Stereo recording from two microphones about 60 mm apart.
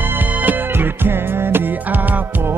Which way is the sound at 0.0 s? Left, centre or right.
Right.